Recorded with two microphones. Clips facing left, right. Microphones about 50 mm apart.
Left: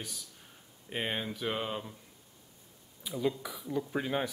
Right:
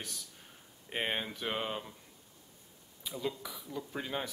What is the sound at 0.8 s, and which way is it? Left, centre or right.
Speech, centre.